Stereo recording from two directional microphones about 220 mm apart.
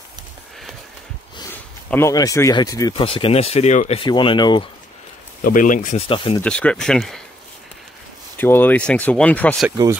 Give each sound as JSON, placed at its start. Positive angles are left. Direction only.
{"t": 1.4, "sound": "speech", "side_deg": 10}
{"t": 5.4, "sound": "speech", "side_deg": 40}
{"t": 6.4, "sound": "speech", "side_deg": 5}
{"t": 8.4, "sound": "speech", "side_deg": 10}
{"t": 9.7, "sound": "speech", "side_deg": -15}